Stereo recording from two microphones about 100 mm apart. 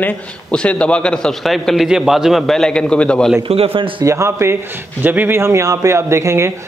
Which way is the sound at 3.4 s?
70° right (ahead or behind).